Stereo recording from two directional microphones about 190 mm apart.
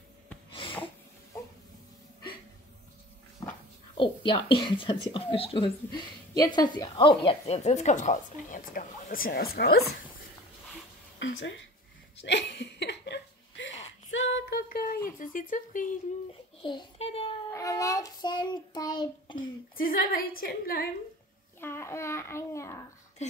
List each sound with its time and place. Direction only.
0.5 s snort: 25° left (ahead or behind)
3.9 s a sound: 25° left (ahead or behind)
4.6 s speech: 25° left (ahead or behind); by 9.8 s 55° left (ahead or behind)
11.1 s a woman's voice: 75° left (ahead or behind)
12.2 s a sound: 65° left (ahead or behind)
14.7 s a sound: 50° left (ahead or behind)
15.0 s a woman's voice: 45° left (ahead or behind)
16.6 s a child's voice: 25° left (ahead or behind)
17.5 s child singing: 15° left (ahead or behind)
19.3 s a woman's voice: 50° left (ahead or behind)
21.5 s a child's voice: 15° left (ahead or behind)